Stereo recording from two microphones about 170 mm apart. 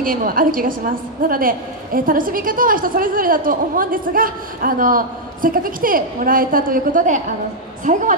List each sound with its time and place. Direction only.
0.0 s a woman's voice: 55° right (ahead or behind)